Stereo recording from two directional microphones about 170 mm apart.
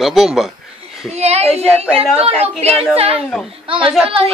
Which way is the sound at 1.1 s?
40° right (ahead or behind).